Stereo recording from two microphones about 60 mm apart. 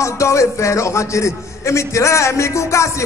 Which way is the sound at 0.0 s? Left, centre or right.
Left.